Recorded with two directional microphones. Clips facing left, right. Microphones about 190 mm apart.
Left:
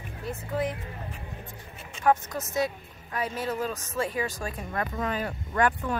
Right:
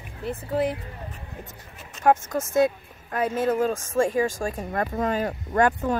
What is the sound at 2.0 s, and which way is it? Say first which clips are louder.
A woman's voice: right 4 dB; 50° right (ahead or behind).